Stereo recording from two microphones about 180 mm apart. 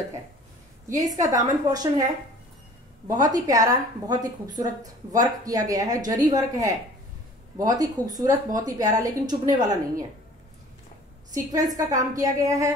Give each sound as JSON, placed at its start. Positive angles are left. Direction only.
{"t": 0.8, "sound": "speech", "side_deg": -20}
{"t": 3.1, "sound": "speech", "side_deg": -20}
{"t": 11.5, "sound": "speech", "side_deg": -20}